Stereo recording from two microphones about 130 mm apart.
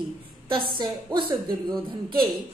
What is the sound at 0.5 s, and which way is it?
A woman's voice, 40° right (ahead or behind).